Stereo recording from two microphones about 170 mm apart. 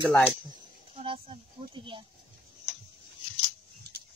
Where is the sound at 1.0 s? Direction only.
30° right (ahead or behind).